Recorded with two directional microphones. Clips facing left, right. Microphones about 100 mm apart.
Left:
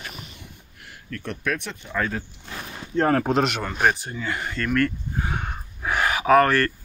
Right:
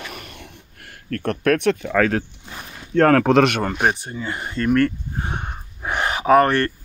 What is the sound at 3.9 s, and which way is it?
Speech, 25° right (ahead or behind).